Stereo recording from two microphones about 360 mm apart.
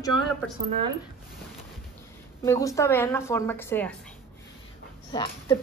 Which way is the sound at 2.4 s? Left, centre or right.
Centre.